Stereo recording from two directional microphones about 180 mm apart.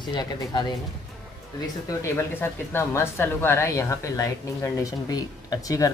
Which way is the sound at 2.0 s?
15° left (ahead or behind).